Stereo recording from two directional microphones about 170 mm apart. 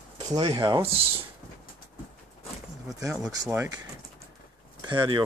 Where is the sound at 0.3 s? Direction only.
30° right (ahead or behind).